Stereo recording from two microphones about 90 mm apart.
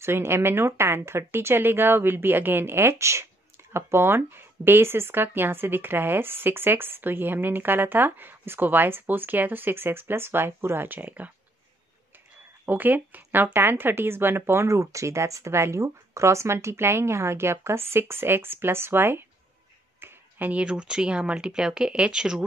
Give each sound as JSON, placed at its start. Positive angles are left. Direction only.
{"t": 0.0, "sound": "speech", "side_deg": -30}
{"t": 12.6, "sound": "speech", "side_deg": -20}